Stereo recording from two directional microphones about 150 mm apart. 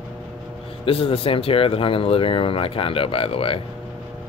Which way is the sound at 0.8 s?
40° left (ahead or behind).